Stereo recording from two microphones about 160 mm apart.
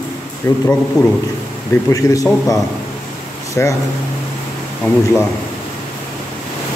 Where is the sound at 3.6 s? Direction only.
15° left (ahead or behind).